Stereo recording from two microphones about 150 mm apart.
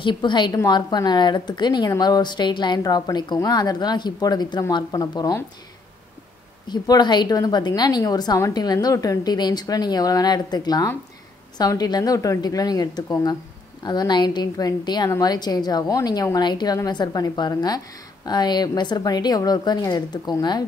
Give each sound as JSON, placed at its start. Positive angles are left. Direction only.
{"t": 0.0, "sound": "a woman's voice", "side_deg": 30}
{"t": 6.7, "sound": "a woman's voice", "side_deg": 30}